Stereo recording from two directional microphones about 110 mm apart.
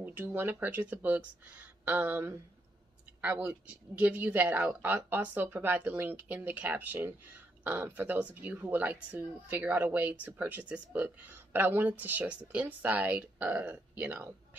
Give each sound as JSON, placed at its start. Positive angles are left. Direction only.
{"t": 0.0, "sound": "speech", "side_deg": -15}